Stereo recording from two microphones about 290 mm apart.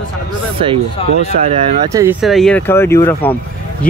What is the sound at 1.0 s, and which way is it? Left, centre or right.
Speech, centre.